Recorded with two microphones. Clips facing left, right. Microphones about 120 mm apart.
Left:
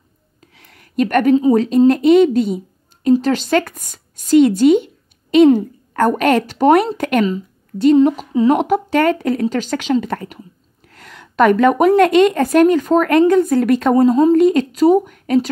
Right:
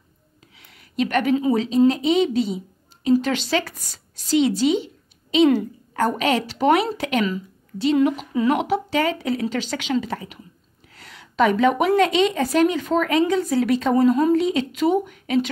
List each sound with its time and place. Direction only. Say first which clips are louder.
0.6 s a sound: left 6 dB; 50° left (ahead or behind)
1.5 s a woman's voice: left 6 dB; 45° left (ahead or behind)
3.1 s speech: left 5 dB; 40° left (ahead or behind)
7.8 s a woman's voice: left 7 dB; 40° left (ahead or behind)
8.5 s speech: left 6 dB; 50° left (ahead or behind)
10.9 s a sound: left 5 dB; 50° left (ahead or behind)
12.0 s speech: left 7 dB; 50° left (ahead or behind)
13.9 s a woman's voice: left 5 dB; 30° left (ahead or behind)
14.3 s speech: left 7 dB; 50° left (ahead or behind)